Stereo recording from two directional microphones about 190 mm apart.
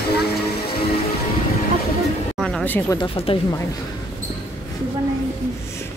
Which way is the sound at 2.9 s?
30° left (ahead or behind).